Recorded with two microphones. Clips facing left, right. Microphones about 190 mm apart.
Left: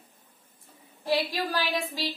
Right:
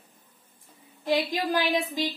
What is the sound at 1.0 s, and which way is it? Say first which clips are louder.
A woman's voice: right 2 dB; 20° right (ahead or behind).